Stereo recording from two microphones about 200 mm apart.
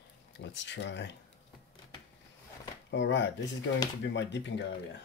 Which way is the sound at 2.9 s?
65° left (ahead or behind).